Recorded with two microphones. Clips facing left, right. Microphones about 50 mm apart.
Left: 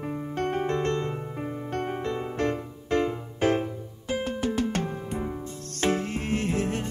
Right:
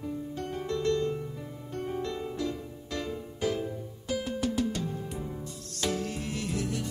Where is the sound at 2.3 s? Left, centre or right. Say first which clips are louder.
Left 6 dB; left.